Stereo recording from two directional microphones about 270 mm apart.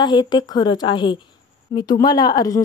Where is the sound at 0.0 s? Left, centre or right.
Centre.